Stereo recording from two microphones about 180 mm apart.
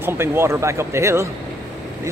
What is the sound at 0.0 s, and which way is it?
Speech, 15° right (ahead or behind).